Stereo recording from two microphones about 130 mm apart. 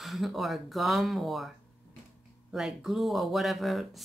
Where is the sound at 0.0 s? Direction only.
Centre (ahead or behind).